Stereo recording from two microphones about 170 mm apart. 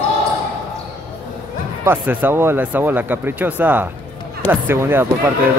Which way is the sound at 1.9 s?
10° right (ahead or behind).